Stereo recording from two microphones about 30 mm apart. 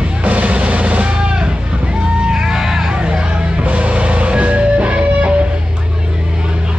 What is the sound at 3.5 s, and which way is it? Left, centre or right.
Music, right.